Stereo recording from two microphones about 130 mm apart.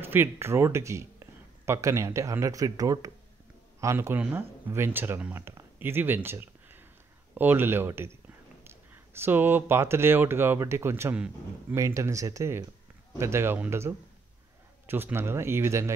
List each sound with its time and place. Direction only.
0.0 s speech: 15° right (ahead or behind)
11.7 s speech: 25° right (ahead or behind)